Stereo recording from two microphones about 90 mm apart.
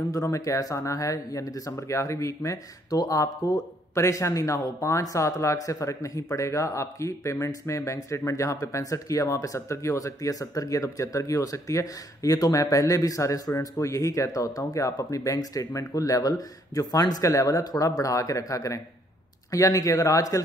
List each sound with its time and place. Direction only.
0.1 s speech: 35° left (ahead or behind)